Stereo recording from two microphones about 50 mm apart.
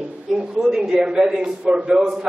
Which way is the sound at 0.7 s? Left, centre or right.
Centre.